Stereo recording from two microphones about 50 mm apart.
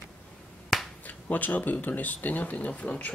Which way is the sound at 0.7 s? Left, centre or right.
Centre.